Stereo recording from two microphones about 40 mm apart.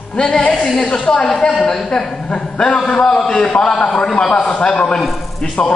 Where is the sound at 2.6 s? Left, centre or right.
Left; by 3.5 s centre.